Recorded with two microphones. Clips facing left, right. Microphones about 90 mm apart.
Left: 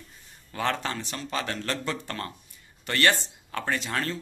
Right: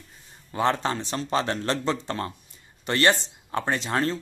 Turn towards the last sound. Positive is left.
turn(degrees=-30)  # may be behind; listen again after turning